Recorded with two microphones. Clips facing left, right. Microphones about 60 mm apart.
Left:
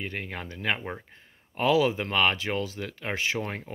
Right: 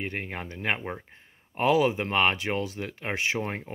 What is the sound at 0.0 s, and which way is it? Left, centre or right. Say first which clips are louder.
Speech: right 1 dB; right.